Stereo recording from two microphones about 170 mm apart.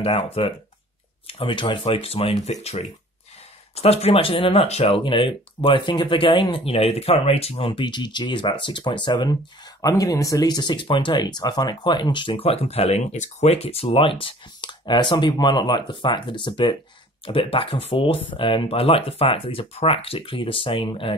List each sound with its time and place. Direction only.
0.0 s speech: 35° left (ahead or behind)